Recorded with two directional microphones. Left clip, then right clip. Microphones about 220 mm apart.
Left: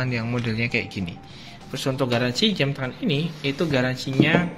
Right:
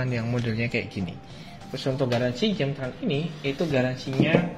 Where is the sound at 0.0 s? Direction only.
Centre (ahead or behind).